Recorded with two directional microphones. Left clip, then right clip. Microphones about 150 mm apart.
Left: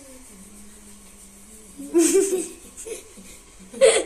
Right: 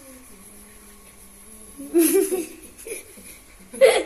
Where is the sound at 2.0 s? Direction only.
15° left (ahead or behind).